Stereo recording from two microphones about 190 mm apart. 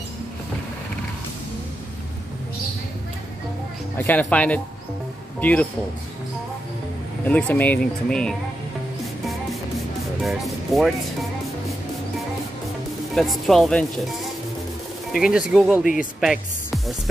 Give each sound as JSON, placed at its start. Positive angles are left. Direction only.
{"t": 4.0, "sound": "speech", "side_deg": 10}
{"t": 7.2, "sound": "speech", "side_deg": 10}
{"t": 10.2, "sound": "speech", "side_deg": 0}
{"t": 13.1, "sound": "speech", "side_deg": 0}
{"t": 15.8, "sound": "speech", "side_deg": 45}
{"t": 16.2, "sound": "speech", "side_deg": 0}